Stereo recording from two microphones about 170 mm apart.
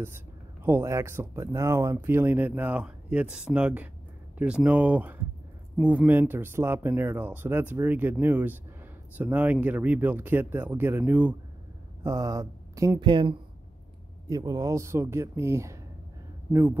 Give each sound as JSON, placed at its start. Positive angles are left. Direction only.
{"t": 0.7, "sound": "speech", "side_deg": -15}